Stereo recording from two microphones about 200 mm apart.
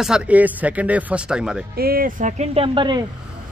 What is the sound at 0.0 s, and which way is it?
Speech, 5° right (ahead or behind).